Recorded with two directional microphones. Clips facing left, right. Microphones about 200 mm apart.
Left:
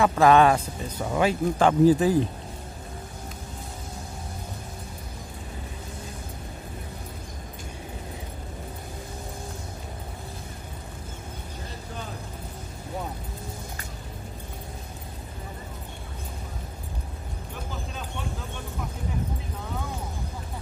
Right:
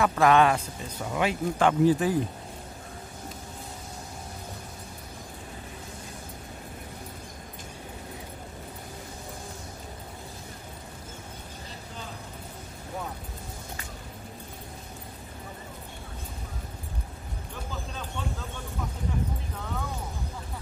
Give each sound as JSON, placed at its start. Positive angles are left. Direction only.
{"t": 0.0, "sound": "speech", "side_deg": 30}